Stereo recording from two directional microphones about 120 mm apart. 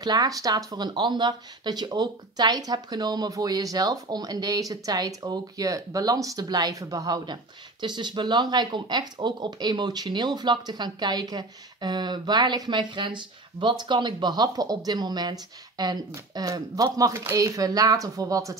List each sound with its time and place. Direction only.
0.0 s speech: 35° right (ahead or behind)